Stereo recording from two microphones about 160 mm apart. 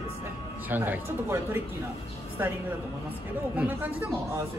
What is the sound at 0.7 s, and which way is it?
Speech, 10° right (ahead or behind).